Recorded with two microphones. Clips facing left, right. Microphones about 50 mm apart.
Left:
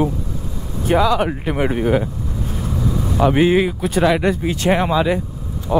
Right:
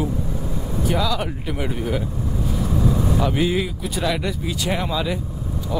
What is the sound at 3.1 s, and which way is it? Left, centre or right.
Speech, left.